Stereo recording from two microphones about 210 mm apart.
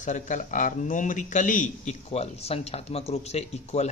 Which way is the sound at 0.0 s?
35° left (ahead or behind).